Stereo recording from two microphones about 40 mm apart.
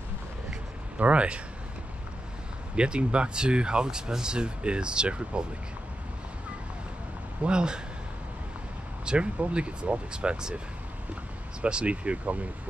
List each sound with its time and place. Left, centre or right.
0.9 s speech: right
2.7 s speech: right
7.4 s speech: right
9.0 s speech: right
11.6 s speech: right